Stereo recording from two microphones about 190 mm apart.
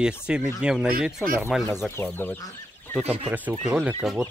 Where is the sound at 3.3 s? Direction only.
10° right (ahead or behind).